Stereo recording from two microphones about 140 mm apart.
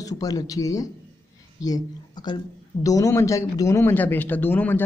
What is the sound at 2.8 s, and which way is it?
Speech, 25° left (ahead or behind).